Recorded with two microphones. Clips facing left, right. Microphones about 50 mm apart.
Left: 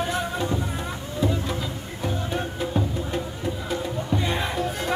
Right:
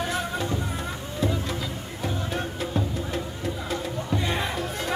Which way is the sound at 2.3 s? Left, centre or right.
Centre.